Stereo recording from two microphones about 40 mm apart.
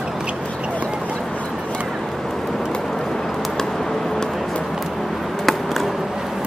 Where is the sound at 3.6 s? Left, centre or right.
Centre.